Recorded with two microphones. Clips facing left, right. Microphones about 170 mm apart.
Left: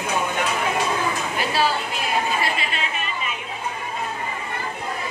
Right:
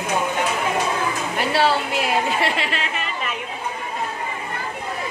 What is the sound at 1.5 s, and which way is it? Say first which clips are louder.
A woman's voice: right 5 dB; 75° right (ahead or behind).